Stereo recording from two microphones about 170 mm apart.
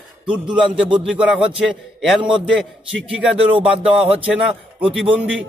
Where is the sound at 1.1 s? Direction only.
5° right (ahead or behind).